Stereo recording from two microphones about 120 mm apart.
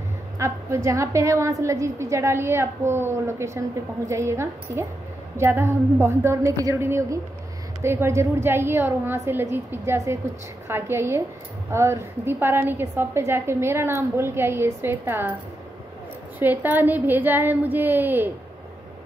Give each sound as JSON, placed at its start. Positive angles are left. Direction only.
{"t": 0.4, "sound": "a woman's voice", "side_deg": -25}
{"t": 16.3, "sound": "a woman's voice", "side_deg": -15}